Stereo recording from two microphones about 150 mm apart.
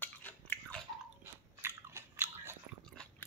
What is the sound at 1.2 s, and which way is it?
Biting, 15° right (ahead or behind).